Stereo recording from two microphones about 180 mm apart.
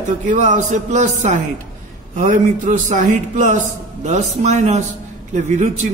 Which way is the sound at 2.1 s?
45° right (ahead or behind).